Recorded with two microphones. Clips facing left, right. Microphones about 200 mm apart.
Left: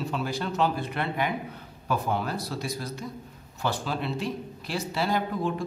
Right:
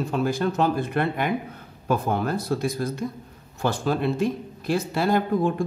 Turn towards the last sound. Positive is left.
turn(degrees=-50)  # may be behind; listen again after turning